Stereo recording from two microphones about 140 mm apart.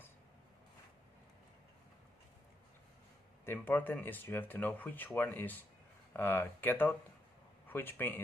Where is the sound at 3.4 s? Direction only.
15° left (ahead or behind).